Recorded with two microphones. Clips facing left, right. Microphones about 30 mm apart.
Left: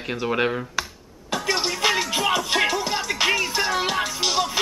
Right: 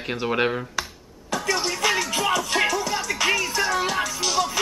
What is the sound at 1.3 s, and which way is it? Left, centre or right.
Speech, left.